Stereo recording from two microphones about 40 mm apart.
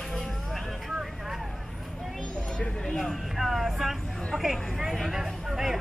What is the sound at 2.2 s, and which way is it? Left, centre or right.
Music, left.